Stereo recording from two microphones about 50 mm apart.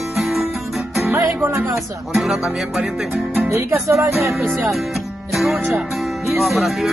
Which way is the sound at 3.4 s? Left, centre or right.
Right.